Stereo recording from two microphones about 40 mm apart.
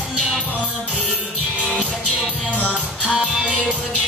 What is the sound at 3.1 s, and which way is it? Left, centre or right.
Music, centre.